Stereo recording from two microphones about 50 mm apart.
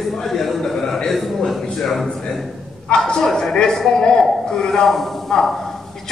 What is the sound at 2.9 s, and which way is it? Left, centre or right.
A man's voice, centre.